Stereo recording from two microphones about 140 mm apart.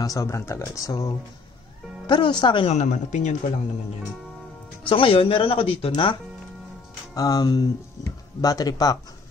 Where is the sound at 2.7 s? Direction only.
55° left (ahead or behind).